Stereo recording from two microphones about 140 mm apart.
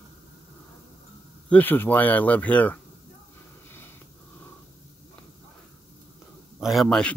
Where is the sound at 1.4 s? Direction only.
10° left (ahead or behind).